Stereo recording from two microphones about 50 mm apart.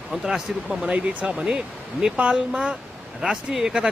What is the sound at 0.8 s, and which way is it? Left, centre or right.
Speech, right.